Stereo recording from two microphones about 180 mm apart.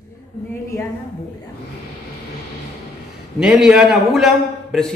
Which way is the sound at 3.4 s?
5° right (ahead or behind).